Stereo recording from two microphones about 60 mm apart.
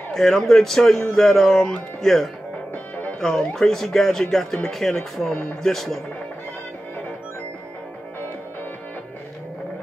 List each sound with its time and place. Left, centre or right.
0.1 s speech: centre
2.7 s music: left
3.2 s speech: centre